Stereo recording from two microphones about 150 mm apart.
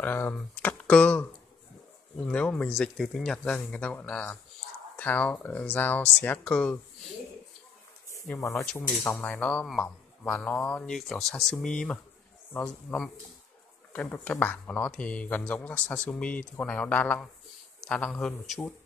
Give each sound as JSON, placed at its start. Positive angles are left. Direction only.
{"t": 0.0, "sound": "speech", "side_deg": 15}
{"t": 2.2, "sound": "speech", "side_deg": 5}
{"t": 8.7, "sound": "a man's voice", "side_deg": 15}